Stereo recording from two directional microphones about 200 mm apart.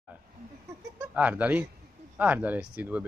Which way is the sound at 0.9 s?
10° right (ahead or behind).